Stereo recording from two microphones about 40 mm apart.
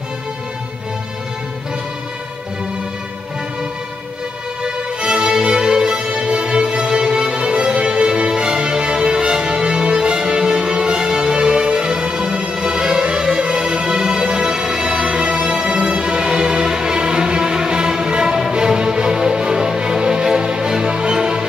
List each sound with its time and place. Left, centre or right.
4.6 s music: centre